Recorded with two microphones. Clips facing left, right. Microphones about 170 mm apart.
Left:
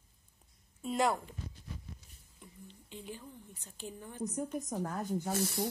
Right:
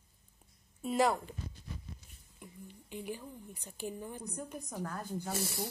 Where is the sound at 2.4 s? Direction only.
10° right (ahead or behind).